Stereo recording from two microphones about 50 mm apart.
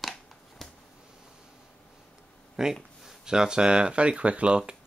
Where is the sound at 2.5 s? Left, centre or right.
Centre.